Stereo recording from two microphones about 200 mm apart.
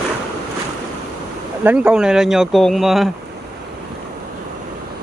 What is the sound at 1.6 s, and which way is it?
Speech, 10° right (ahead or behind).